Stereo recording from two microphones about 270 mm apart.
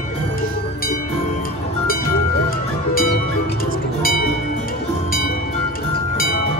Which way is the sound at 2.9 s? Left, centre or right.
Left.